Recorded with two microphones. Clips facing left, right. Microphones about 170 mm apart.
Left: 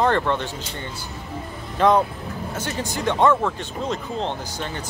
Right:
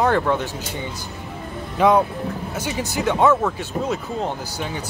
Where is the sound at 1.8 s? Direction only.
10° right (ahead or behind).